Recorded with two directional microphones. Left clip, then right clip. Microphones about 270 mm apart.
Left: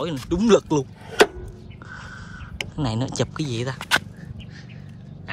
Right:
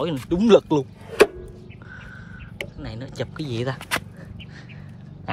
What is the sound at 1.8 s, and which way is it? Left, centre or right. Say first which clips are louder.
Crow: left 4 dB; centre.